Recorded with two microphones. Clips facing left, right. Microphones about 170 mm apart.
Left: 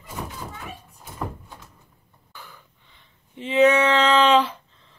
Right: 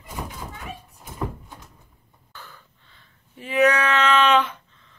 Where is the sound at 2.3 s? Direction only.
15° left (ahead or behind).